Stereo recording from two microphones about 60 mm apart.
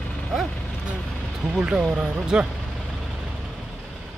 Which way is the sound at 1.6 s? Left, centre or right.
Centre.